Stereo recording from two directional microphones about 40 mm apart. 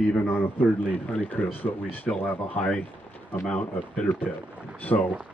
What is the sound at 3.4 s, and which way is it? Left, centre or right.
Speech, left.